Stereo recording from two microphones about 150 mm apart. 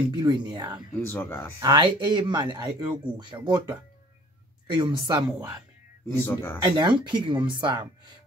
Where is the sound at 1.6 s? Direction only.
30° right (ahead or behind).